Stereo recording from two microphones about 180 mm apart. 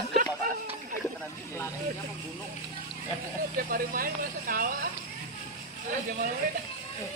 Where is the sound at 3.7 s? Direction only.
50° right (ahead or behind).